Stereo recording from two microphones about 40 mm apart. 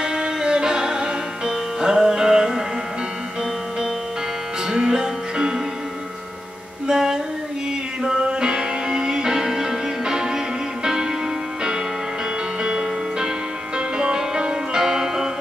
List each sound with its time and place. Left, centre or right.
0.0 s music: centre
4.6 s music: centre
6.9 s music: centre
12.6 s music: centre